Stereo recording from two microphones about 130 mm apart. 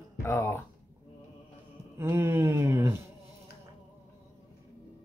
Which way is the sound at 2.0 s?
20° right (ahead or behind).